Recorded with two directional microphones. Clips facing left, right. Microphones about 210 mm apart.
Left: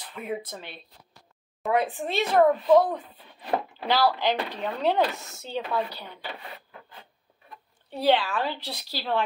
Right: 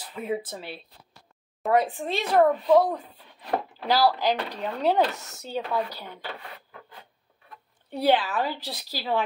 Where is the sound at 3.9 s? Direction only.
40° right (ahead or behind).